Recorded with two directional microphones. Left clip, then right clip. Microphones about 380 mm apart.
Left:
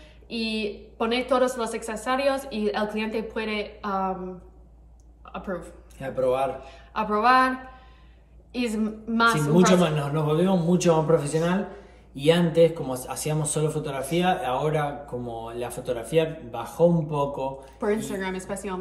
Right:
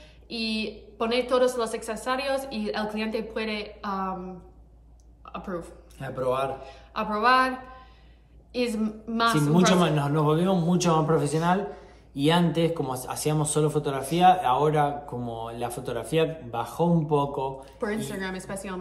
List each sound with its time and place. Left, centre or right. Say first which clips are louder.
0.3 s a woman's voice: left 2 dB; centre
5.3 s a woman's voice: left 2 dB; centre
8.5 s a woman's voice: right 1 dB; centre
9.9 s speech: even; centre